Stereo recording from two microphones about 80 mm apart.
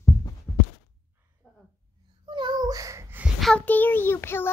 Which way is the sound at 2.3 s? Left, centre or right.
Right.